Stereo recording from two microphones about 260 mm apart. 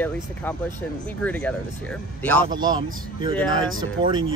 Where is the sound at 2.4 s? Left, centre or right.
Centre.